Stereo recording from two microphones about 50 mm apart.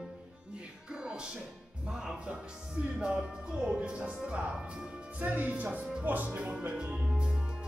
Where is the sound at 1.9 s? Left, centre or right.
Centre; by 6.5 s right.